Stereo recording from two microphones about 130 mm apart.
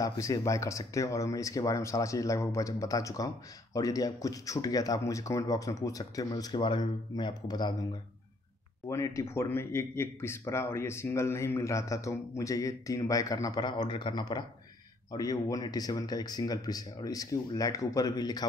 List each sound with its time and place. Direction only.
0.0 s a man's voice: 25° left (ahead or behind)
8.8 s a man's voice: 25° left (ahead or behind)